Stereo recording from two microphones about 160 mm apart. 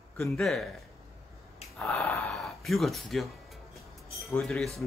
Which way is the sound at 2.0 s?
15° left (ahead or behind).